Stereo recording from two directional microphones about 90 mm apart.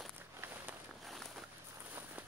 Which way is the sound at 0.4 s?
20° right (ahead or behind).